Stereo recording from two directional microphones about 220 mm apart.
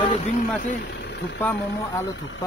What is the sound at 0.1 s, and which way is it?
Speech, 30° left (ahead or behind).